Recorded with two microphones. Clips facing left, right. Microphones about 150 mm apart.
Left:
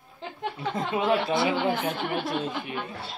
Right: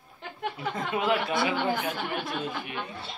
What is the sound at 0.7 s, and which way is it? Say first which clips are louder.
Speech: left 2 dB; 30° left (ahead or behind).